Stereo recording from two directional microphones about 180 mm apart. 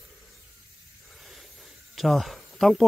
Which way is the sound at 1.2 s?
Centre (ahead or behind).